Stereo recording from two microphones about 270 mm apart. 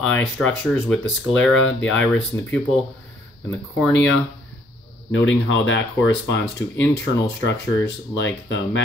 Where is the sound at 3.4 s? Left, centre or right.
Centre.